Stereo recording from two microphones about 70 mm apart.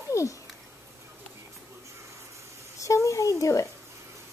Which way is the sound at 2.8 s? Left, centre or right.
Left.